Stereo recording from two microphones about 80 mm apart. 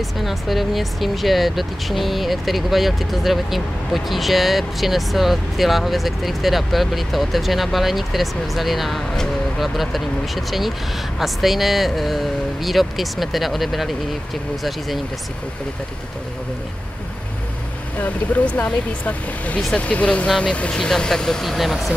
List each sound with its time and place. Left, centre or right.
0.2 s speech: centre
17.9 s speech: centre